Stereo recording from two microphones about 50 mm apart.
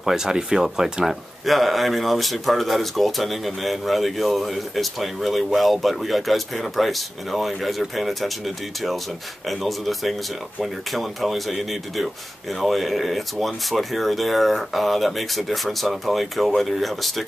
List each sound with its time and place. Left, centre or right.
0.0 s speech: centre
1.4 s speech: centre
9.5 s speech: centre